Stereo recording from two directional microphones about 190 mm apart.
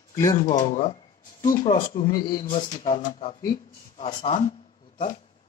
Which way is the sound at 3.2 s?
25° left (ahead or behind).